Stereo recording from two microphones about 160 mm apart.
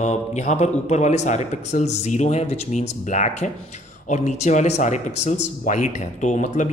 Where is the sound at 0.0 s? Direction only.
45° left (ahead or behind).